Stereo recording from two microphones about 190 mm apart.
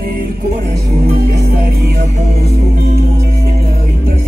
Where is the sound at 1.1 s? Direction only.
55° right (ahead or behind).